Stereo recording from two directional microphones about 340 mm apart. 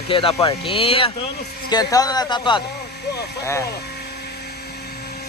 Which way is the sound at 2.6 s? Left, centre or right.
Left.